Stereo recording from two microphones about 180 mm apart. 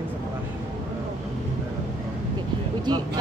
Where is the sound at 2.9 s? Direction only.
25° right (ahead or behind).